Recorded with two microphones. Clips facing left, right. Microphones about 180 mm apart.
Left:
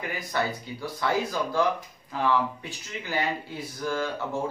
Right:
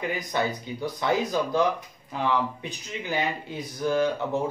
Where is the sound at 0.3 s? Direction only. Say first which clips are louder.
Left 2 dB; 20° right (ahead or behind).